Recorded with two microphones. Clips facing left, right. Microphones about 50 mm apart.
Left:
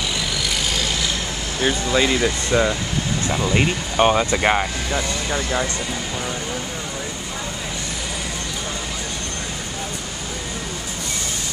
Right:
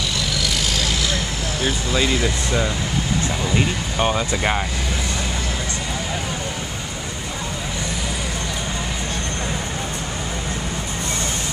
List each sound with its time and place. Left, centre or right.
1.6 s speech: centre
3.5 s speech: centre